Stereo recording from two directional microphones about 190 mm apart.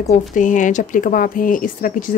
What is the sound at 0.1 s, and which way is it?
Speech, 40° left (ahead or behind).